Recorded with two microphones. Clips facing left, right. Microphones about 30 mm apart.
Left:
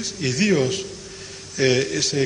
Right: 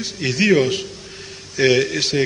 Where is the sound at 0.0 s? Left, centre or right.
Right.